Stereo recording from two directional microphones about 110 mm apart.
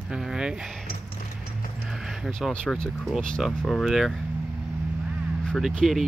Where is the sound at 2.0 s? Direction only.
Centre (ahead or behind).